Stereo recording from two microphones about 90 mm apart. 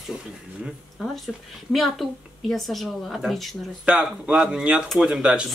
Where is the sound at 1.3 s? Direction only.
10° right (ahead or behind).